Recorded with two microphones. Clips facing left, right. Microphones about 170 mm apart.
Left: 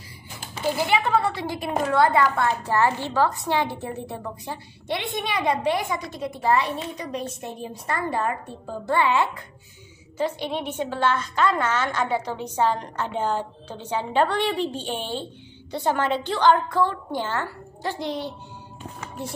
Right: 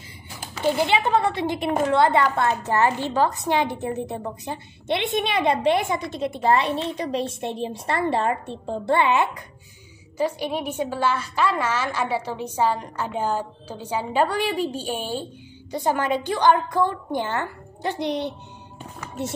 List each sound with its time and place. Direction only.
0.7 s a woman's voice: 25° right (ahead or behind)